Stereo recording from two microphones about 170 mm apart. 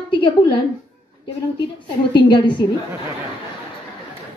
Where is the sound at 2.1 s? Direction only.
30° left (ahead or behind).